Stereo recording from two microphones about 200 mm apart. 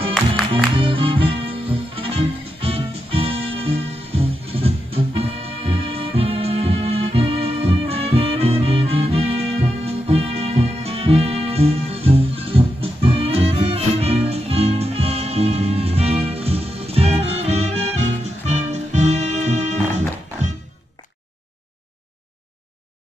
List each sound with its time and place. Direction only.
0.7 s music: 25° right (ahead or behind)